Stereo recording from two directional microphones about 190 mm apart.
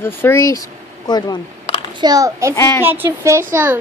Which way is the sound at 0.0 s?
10° left (ahead or behind).